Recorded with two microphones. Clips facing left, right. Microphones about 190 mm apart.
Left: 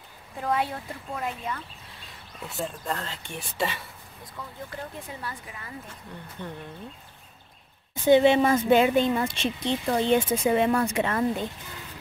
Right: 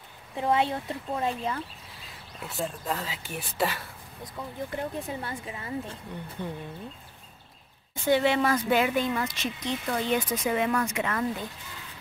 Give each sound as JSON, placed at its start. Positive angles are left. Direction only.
{"t": 0.4, "sound": "speech", "side_deg": -25}
{"t": 1.9, "sound": "speech", "side_deg": 0}
{"t": 4.4, "sound": "speech", "side_deg": -25}
{"t": 6.4, "sound": "speech", "side_deg": -15}
{"t": 7.9, "sound": "speech", "side_deg": 20}